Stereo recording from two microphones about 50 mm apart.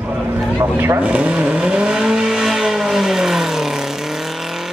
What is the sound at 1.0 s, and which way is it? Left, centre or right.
Vehicle, right.